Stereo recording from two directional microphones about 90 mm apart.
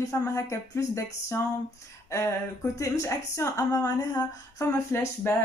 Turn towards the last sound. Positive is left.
turn(degrees=35)  # may be behind; listen again after turning